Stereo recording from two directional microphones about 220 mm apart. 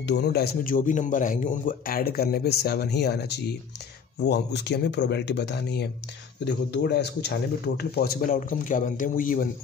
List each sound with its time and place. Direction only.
0.0 s a man's voice: 50° left (ahead or behind)